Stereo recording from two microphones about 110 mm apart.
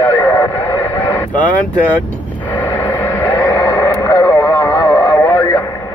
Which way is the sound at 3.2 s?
25° left (ahead or behind).